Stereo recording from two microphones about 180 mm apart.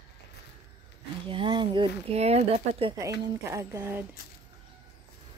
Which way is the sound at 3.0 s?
15° right (ahead or behind).